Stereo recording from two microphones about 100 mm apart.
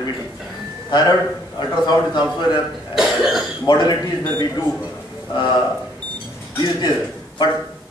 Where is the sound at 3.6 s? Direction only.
45° left (ahead or behind).